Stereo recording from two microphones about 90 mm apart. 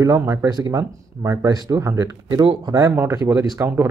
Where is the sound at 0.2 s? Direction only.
25° right (ahead or behind).